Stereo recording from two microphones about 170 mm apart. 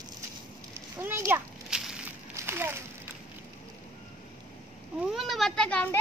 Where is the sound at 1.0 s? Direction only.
15° right (ahead or behind).